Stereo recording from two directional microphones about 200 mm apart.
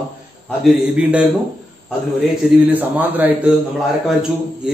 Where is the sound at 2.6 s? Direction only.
10° right (ahead or behind).